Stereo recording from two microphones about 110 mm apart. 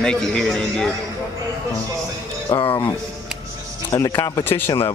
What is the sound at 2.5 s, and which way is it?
Speech, 25° left (ahead or behind).